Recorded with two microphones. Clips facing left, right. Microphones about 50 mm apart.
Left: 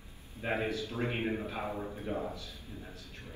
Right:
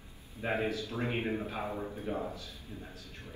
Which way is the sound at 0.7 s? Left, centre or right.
Left.